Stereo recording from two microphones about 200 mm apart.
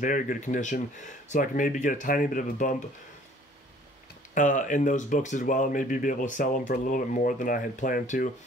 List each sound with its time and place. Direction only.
0.0 s speech: 40° left (ahead or behind)
4.3 s speech: 40° left (ahead or behind)